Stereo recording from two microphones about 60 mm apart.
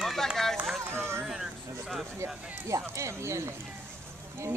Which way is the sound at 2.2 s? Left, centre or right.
Right.